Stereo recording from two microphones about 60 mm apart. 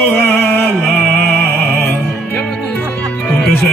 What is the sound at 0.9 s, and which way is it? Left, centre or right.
Music, left.